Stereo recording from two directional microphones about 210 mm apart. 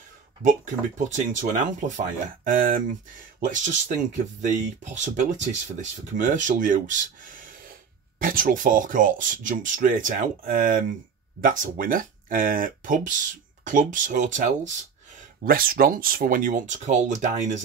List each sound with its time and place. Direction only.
0.9 s speech: 35° right (ahead or behind)